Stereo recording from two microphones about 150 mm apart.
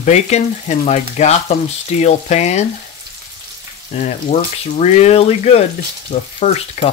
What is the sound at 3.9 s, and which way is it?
Speech, 50° left (ahead or behind).